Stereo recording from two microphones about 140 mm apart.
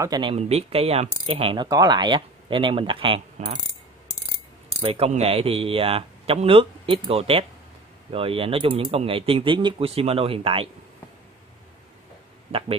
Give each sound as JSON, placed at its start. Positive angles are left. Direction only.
{"t": 0.0, "sound": "speech", "side_deg": -30}
{"t": 0.4, "sound": "speech", "side_deg": -45}
{"t": 3.4, "sound": "mechanisms", "side_deg": -55}
{"t": 4.7, "sound": "speech", "side_deg": -45}
{"t": 12.5, "sound": "speech", "side_deg": -45}